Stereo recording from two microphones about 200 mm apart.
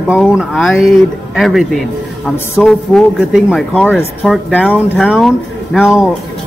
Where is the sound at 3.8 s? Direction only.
10° left (ahead or behind).